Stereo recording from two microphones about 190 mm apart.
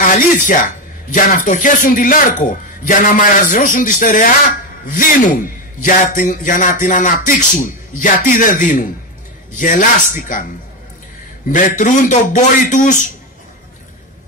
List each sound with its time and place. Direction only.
0.0 s speech: 45° left (ahead or behind)
11.4 s a man's voice: 45° left (ahead or behind)